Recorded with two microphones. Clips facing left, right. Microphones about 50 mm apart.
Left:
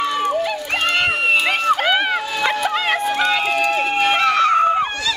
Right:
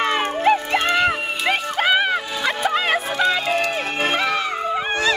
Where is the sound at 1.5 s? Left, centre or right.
Centre.